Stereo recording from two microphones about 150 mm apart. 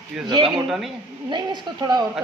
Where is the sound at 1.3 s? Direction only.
30° right (ahead or behind).